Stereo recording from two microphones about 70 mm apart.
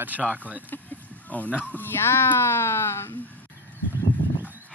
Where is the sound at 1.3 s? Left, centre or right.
Left.